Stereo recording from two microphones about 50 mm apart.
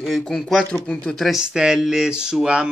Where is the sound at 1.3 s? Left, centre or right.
Centre.